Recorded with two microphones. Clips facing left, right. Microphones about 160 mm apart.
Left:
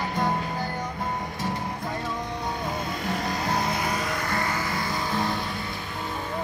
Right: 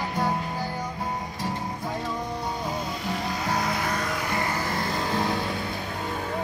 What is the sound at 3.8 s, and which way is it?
Music, 15° left (ahead or behind).